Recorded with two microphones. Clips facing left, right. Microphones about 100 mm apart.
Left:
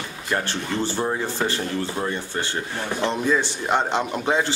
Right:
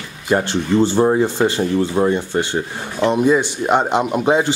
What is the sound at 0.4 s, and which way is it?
Speech, 20° right (ahead or behind).